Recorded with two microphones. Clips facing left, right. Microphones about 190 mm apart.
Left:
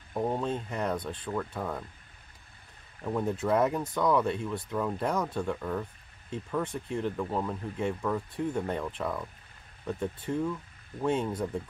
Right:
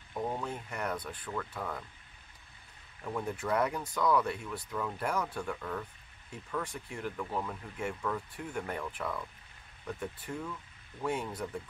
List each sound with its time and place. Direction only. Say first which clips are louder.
0.1 s speech: left 6 dB; 25° left (ahead or behind)
3.0 s speech: left 6 dB; 20° left (ahead or behind)